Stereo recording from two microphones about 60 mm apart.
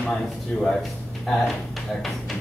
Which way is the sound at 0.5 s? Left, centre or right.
Centre.